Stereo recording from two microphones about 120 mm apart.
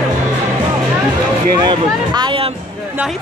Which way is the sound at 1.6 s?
40° right (ahead or behind).